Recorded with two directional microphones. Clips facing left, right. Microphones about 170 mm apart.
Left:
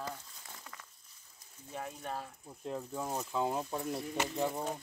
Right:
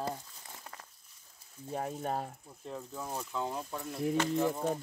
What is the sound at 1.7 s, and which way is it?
Speech, 40° right (ahead or behind).